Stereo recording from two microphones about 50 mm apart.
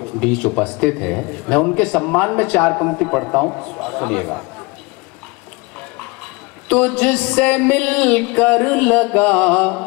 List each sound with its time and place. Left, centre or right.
0.0 s a man's voice: left
6.7 s a man's voice: left